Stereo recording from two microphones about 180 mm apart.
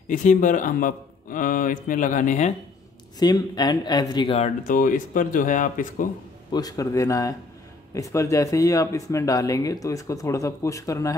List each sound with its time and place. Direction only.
0.1 s speech: 45° left (ahead or behind)
3.2 s speech: 20° left (ahead or behind)
4.6 s speech: 50° left (ahead or behind)
6.5 s speech: 20° left (ahead or behind)